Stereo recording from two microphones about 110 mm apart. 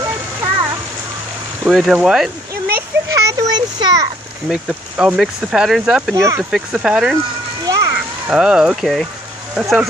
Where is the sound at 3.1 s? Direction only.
35° right (ahead or behind).